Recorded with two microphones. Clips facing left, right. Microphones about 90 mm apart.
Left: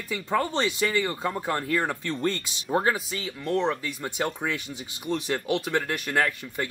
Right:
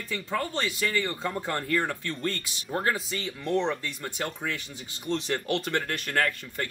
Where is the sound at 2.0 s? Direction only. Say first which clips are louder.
Left 4 dB; 20° left (ahead or behind).